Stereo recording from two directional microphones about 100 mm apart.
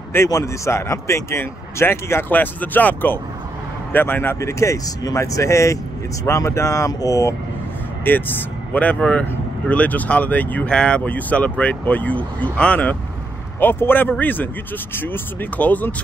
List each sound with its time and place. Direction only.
0.1 s speech: 30° left (ahead or behind)
8.0 s speech: 20° left (ahead or behind)